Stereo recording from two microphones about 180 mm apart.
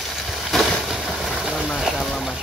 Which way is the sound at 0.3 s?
Centre (ahead or behind).